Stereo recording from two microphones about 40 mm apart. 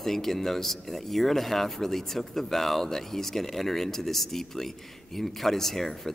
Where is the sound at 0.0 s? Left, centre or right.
Centre.